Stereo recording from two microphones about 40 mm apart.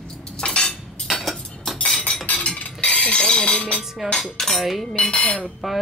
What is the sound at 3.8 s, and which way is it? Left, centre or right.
Dishes, centre.